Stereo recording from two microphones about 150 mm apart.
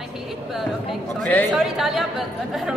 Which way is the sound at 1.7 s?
Centre (ahead or behind).